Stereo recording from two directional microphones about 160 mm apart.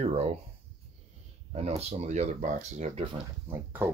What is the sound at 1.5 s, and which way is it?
Speech, 40° right (ahead or behind).